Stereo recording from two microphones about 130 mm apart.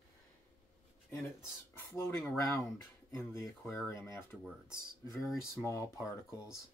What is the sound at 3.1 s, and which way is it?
Speech, 20° left (ahead or behind).